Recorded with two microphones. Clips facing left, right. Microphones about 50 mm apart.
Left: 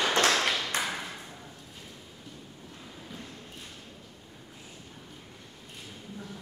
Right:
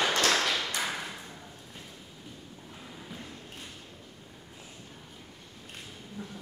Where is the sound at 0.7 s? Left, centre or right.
Left.